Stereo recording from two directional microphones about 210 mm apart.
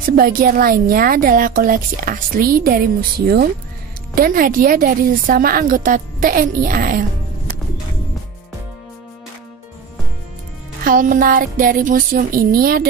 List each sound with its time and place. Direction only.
0.0 s a woman's voice: 45° right (ahead or behind)
10.8 s a woman's voice: 40° right (ahead or behind)